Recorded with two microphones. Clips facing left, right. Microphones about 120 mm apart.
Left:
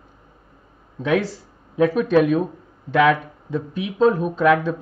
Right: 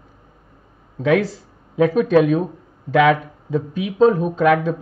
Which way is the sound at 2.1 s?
35° right (ahead or behind).